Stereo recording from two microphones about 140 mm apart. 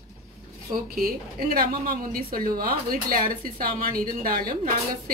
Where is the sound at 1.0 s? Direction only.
90° right.